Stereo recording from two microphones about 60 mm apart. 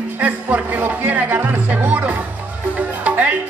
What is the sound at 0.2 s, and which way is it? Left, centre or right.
Speech, right.